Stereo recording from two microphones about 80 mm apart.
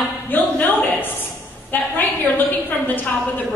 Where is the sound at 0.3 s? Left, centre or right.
Left.